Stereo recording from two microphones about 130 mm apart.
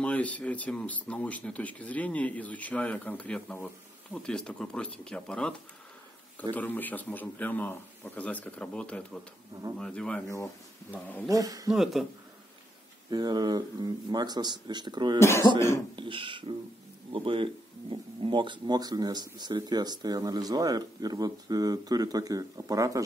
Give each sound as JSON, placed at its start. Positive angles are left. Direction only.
{"t": 0.0, "sound": "speech", "side_deg": 10}
{"t": 6.5, "sound": "speech", "side_deg": 15}
{"t": 10.2, "sound": "speech", "side_deg": 25}
{"t": 11.2, "sound": "speech", "side_deg": -25}
{"t": 11.7, "sound": "speech", "side_deg": 0}
{"t": 13.1, "sound": "speech", "side_deg": -30}
{"t": 15.1, "sound": "speech", "side_deg": 20}
{"t": 16.0, "sound": "speech", "side_deg": -40}